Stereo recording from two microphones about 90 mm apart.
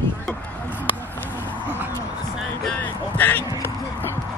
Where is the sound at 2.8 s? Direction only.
20° left (ahead or behind).